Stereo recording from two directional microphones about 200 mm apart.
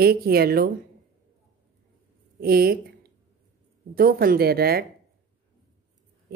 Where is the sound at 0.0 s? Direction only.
50° right (ahead or behind).